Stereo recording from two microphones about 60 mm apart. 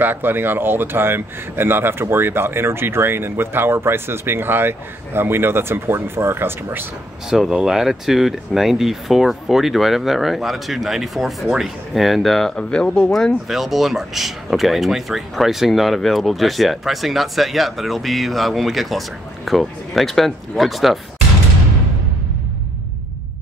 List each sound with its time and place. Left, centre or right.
0.0 s speech: right
7.2 s speech: centre
13.5 s speech: centre